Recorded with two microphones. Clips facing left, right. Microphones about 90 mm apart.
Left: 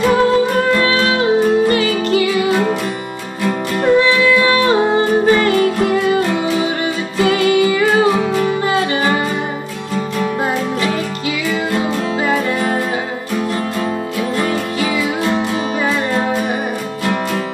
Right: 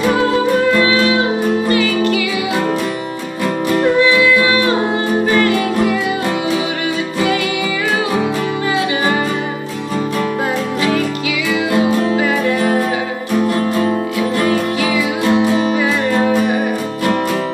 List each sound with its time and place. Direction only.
1.7 s music: 35° left (ahead or behind)
4.9 s music: 25° left (ahead or behind)